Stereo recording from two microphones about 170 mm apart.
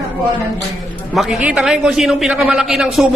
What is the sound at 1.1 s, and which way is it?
A man's voice, centre (ahead or behind).